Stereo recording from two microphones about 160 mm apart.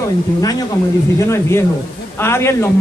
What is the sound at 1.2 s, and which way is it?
A man's voice, 20° left (ahead or behind).